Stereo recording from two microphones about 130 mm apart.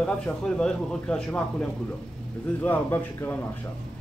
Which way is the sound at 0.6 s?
5° left (ahead or behind).